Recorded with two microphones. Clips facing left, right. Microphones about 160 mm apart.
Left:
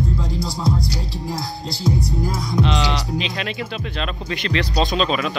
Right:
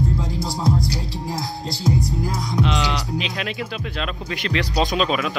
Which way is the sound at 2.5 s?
Centre (ahead or behind).